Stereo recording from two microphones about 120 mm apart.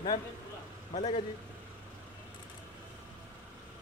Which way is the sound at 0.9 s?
70° left (ahead or behind).